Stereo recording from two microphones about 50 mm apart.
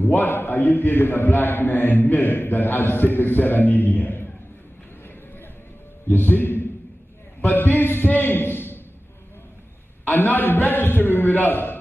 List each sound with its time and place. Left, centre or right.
0.0 s a man's voice: left
6.0 s a man's voice: left
10.0 s a man's voice: left